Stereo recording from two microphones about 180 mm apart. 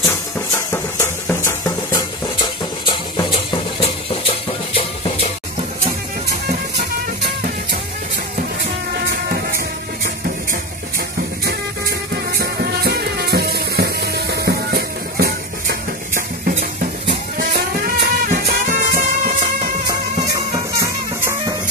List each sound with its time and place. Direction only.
0.6 s music: 15° left (ahead or behind); by 5.3 s 30° left (ahead or behind)
10.0 s music: 50° right (ahead or behind)
12.3 s music: 60° right (ahead or behind)
19.9 s music: 20° right (ahead or behind)